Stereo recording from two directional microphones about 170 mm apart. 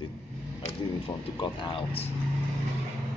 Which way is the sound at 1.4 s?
30° left (ahead or behind).